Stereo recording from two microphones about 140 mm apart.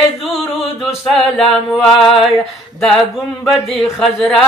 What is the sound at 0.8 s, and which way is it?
Singing, centre (ahead or behind).